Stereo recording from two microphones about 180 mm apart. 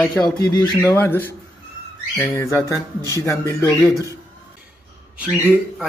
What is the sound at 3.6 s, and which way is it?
Speech, 20° right (ahead or behind).